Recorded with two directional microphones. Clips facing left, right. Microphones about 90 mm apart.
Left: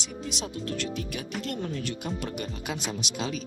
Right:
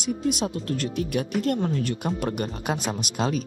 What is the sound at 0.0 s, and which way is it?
Speech, 45° right (ahead or behind).